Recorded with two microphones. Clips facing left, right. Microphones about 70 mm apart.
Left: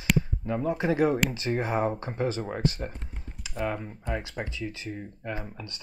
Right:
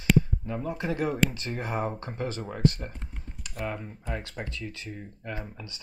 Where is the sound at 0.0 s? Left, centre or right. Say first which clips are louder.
Right 3 dB; centre.